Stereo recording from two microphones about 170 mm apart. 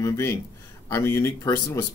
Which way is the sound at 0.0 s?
15° left (ahead or behind).